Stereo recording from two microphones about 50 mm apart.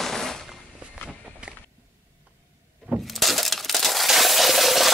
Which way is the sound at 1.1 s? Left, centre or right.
Centre.